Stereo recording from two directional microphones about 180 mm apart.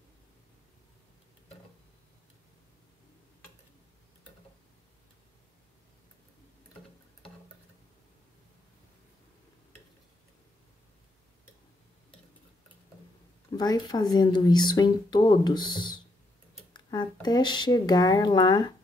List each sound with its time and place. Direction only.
13.5 s speech: 25° left (ahead or behind)